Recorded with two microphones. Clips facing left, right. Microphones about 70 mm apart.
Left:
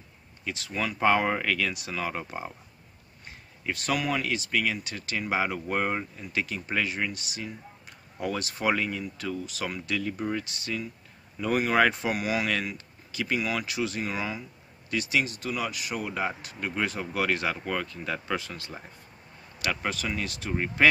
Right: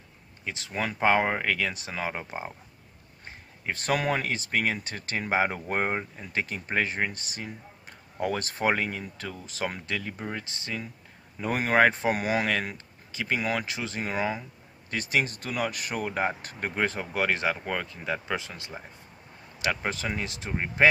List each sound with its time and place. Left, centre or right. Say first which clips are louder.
0.5 s speech: even; right
0.9 s speech: even; right
3.3 s speech: even; right
10.1 s speech: left 4 dB; right